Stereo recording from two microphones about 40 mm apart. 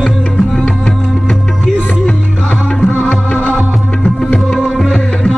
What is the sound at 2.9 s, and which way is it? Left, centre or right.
Music, left.